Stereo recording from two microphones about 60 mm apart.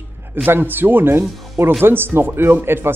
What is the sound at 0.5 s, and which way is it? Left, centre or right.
Speech, right.